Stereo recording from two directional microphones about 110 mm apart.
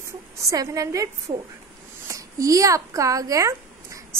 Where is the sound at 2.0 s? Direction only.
30° right (ahead or behind).